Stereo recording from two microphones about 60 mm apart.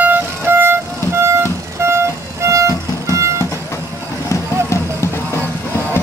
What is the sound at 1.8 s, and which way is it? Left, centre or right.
Music, right.